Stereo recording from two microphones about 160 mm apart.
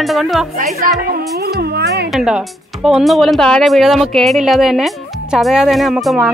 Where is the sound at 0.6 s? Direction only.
60° right (ahead or behind); by 2.0 s 85° right.